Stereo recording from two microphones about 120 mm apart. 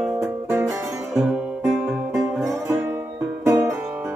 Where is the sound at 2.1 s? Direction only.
25° right (ahead or behind).